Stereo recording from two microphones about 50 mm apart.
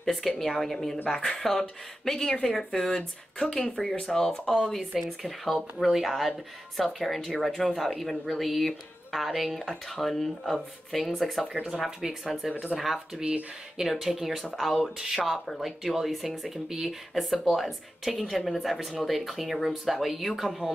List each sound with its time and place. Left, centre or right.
0.0 s speech: centre
1.0 s speech: centre
1.4 s speech: centre
4.7 s speech: centre
13.2 s speech: right
13.7 s speech: centre
14.4 s speech: centre
14.8 s speech: centre